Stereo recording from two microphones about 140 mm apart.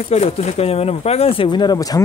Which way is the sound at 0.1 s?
50° left (ahead or behind).